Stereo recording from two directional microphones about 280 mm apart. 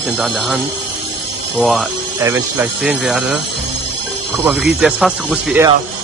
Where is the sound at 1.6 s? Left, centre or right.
Centre.